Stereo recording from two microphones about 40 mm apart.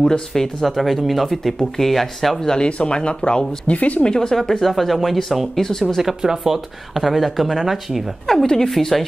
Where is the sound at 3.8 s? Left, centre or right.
Left.